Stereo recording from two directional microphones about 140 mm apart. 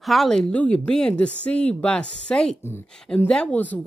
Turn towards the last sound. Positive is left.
turn(degrees=10)  # may be behind; listen again after turning